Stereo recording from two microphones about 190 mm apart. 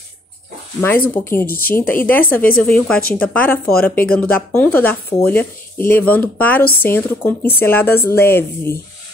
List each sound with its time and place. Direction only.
0.7 s speech: 10° left (ahead or behind)
1.4 s speech: 50° left (ahead or behind)
1.8 s speech: 10° left (ahead or behind)